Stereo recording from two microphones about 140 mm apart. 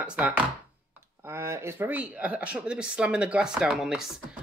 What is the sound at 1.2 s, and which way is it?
Speech, 20° right (ahead or behind).